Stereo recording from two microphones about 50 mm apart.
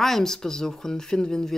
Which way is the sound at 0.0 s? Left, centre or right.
Centre.